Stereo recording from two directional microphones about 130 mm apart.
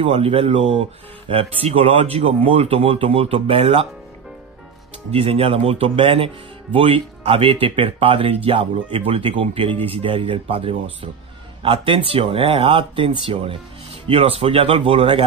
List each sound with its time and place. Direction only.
0.0 s speech: 45° right (ahead or behind)
5.1 s speech: 50° right (ahead or behind)